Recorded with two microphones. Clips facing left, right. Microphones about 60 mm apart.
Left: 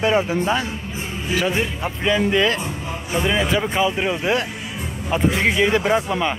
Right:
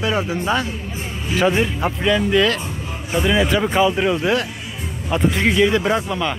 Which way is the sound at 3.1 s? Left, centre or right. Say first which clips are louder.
Right 2 dB; centre.